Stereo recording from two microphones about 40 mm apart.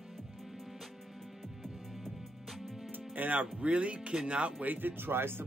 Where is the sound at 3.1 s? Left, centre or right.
Right.